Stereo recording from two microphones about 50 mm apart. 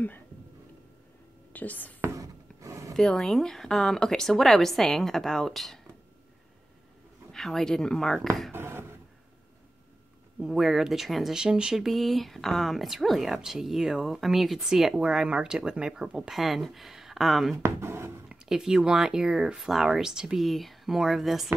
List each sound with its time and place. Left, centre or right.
1.5 s speech: left
2.1 s a sound: right
3.2 s a woman's voice: centre
7.3 s a woman's voice: centre
8.5 s a sound: right
10.4 s speech: centre
11.3 s speech: centre
11.7 s speech: centre
16.3 s speech: centre
17.6 s speech: right
17.8 s a sound: right
18.4 s speech: centre
20.4 s speech: centre